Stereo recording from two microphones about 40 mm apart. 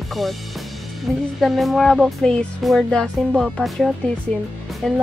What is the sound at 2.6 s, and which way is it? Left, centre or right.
Speech, centre.